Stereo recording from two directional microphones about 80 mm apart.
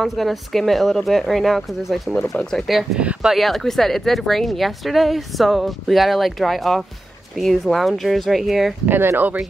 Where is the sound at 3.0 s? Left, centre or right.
Centre.